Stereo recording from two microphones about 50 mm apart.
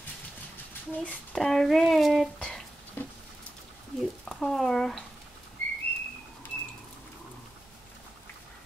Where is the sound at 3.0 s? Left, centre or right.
Left.